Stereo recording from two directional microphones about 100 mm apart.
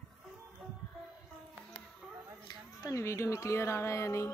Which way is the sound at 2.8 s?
30° left (ahead or behind).